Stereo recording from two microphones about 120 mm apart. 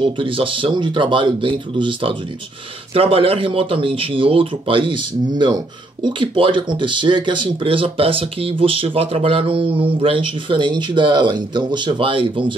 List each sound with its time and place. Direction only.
0.0 s speech: 50° right (ahead or behind)